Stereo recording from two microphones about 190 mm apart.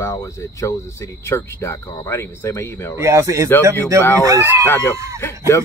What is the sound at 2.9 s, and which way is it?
A man's voice, 15° right (ahead or behind).